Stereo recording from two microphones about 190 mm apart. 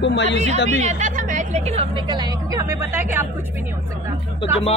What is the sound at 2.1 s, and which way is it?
Speech, 20° right (ahead or behind).